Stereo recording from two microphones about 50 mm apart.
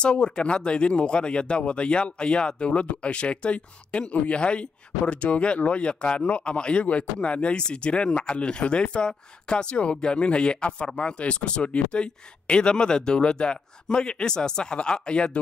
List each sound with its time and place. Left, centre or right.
0.0 s speech: centre